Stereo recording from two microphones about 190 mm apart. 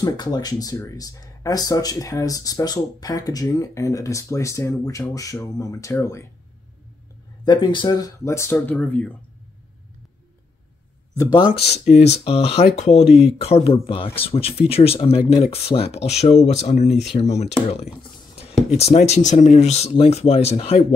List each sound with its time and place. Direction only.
0.0 s speech: 20° left (ahead or behind)
7.4 s speech: 25° left (ahead or behind); by 9.1 s 5° left (ahead or behind)
11.1 s speech: 25° left (ahead or behind)
11.6 s speech: 35° left (ahead or behind)